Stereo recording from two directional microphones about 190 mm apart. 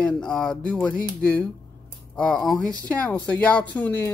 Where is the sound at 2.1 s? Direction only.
5° left (ahead or behind).